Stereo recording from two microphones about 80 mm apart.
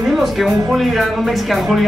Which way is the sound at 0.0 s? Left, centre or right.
Centre.